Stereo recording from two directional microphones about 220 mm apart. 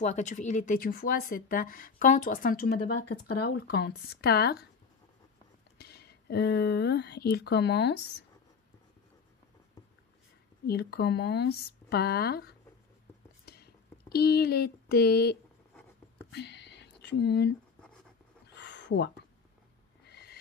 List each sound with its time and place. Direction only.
0.0 s speech: 35° left (ahead or behind)
5.8 s speech: 45° left (ahead or behind)
10.7 s speech: 45° left (ahead or behind)
13.5 s a sound: 45° left (ahead or behind)